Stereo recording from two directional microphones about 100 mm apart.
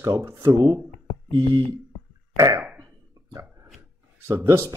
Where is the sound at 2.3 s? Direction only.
35° right (ahead or behind).